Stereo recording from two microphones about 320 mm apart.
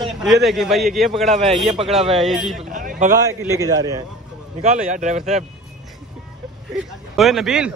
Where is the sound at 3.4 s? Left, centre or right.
Centre.